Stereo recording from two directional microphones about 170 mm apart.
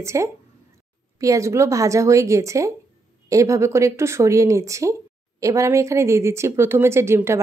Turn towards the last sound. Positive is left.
turn(degrees=-15)  # may be behind; listen again after turning